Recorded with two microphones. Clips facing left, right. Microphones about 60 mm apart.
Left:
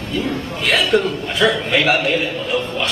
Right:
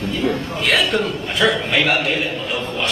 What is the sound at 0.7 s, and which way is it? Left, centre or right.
A man's voice, centre.